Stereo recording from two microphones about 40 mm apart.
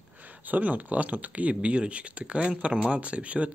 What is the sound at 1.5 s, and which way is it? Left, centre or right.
Speech, right.